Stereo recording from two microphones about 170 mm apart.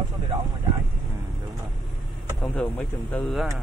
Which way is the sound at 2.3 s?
5° left (ahead or behind).